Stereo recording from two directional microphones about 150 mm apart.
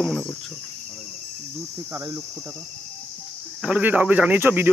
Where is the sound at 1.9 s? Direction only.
15° right (ahead or behind).